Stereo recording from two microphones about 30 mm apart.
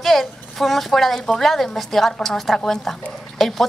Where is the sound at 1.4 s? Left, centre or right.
Centre.